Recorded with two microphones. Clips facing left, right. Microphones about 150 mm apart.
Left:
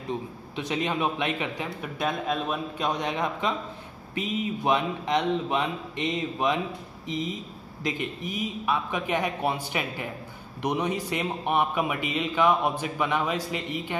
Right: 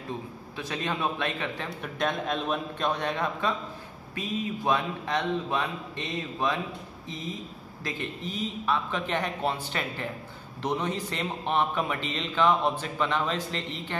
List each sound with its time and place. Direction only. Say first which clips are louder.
0.6 s a man's voice: left 3 dB; 15° left (ahead or behind)
2.9 s a man's voice: left 1 dB; 15° left (ahead or behind)